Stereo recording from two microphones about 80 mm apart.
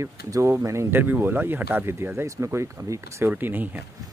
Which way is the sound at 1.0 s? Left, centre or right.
Right.